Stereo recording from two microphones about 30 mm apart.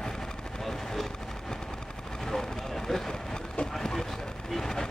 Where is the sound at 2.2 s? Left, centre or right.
Centre.